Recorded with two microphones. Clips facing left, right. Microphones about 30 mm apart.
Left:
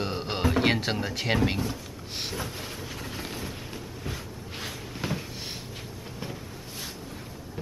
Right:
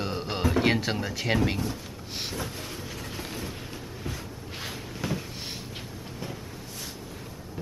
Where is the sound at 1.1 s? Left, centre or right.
Centre.